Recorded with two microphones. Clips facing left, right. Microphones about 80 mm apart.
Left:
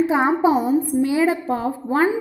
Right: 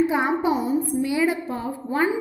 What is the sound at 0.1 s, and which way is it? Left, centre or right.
A woman's voice, left.